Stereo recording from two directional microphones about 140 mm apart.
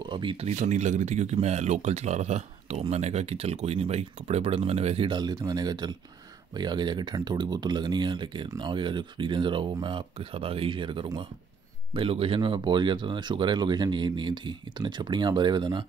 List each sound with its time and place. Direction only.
0.0 s speech: 35° right (ahead or behind)